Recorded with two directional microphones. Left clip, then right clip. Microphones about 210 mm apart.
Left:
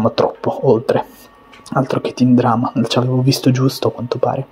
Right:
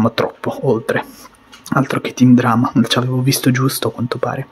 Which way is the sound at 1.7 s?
30° right (ahead or behind).